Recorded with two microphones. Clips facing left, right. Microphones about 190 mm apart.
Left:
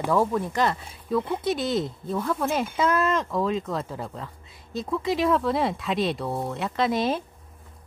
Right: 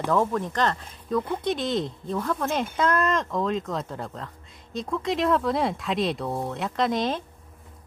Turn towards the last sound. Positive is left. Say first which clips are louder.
# left 1 dB
turn(degrees=5)  # may be behind; listen again after turning